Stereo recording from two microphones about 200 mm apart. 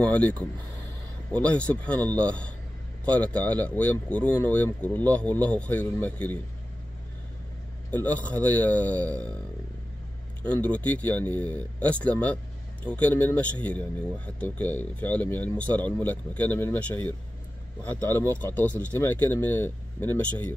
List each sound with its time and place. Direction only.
0.0 s speech: 5° left (ahead or behind)
7.9 s speech: 10° left (ahead or behind)
10.4 s speech: 5° left (ahead or behind)
18.5 s speech: 10° left (ahead or behind)